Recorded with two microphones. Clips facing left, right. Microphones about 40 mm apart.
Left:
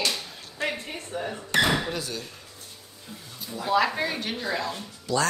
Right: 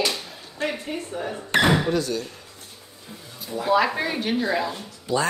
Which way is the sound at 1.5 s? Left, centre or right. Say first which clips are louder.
Right 3 dB; right.